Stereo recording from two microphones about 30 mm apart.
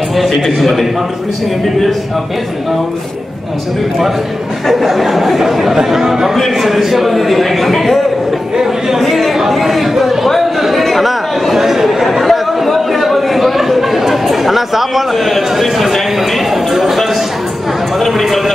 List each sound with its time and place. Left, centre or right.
0.1 s a man's voice: centre
4.8 s a man's voice: centre
9.0 s speech: centre
10.8 s chatter: centre
16.7 s a sound: centre
17.9 s a sound: centre